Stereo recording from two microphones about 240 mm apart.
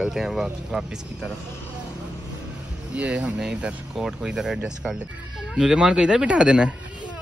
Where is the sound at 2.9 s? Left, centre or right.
Centre.